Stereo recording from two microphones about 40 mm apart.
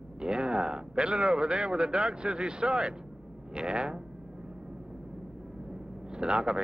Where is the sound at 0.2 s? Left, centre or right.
Right.